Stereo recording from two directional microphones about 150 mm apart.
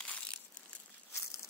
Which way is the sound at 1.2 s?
20° left (ahead or behind).